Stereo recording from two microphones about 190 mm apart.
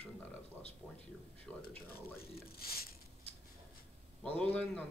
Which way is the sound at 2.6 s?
50° left (ahead or behind).